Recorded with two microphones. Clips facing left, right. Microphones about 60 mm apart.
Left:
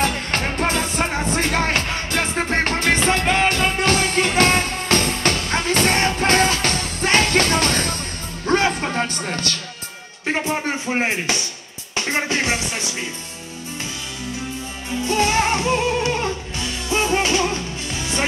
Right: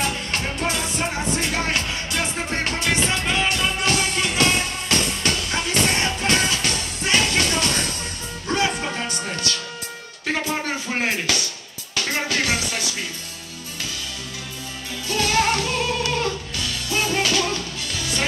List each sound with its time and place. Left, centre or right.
0.0 s music: left
10.2 s music: left
10.9 s speech: left
11.9 s music: left
14.9 s music: left